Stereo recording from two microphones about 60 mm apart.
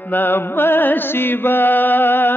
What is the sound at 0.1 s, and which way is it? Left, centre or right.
Mantra, left.